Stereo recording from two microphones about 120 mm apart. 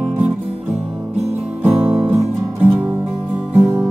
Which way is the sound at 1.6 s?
15° right (ahead or behind).